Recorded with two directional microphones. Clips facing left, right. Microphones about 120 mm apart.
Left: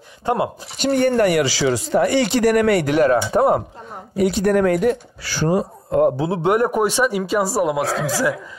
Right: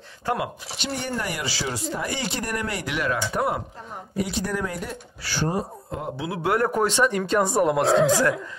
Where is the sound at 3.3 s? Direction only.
30° left (ahead or behind).